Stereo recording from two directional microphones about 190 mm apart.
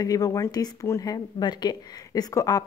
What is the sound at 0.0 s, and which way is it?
A woman's voice, 20° left (ahead or behind).